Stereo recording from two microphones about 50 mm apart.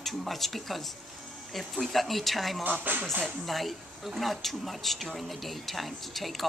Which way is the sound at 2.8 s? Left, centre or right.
Right.